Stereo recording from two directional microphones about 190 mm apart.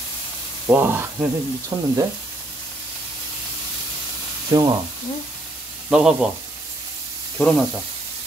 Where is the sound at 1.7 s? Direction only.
20° right (ahead or behind).